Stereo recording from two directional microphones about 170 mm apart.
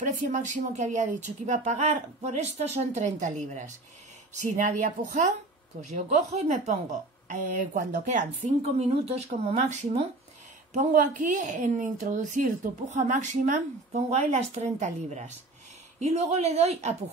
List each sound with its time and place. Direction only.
0.0 s a woman's voice: 45° right (ahead or behind)